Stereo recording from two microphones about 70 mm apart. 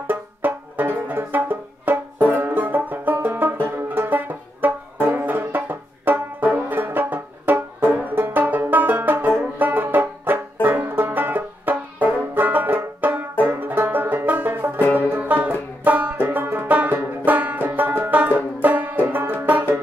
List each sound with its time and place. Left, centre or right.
0.0 s banjo: right
14.5 s music: right
15.0 s banjo: right